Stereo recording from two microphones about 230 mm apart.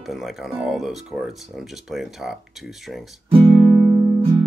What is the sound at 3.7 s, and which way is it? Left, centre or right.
Music, centre.